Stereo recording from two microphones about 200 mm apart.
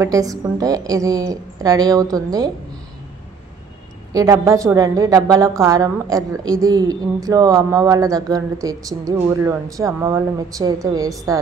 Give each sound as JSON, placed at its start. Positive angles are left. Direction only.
{"t": 0.0, "sound": "a woman's voice", "side_deg": -15}
{"t": 4.1, "sound": "a woman's voice", "side_deg": -15}